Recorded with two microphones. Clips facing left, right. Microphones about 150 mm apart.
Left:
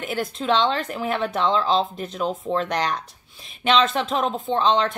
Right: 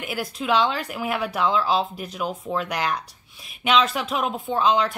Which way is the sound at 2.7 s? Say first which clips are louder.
Left 2 dB; 5° right (ahead or behind).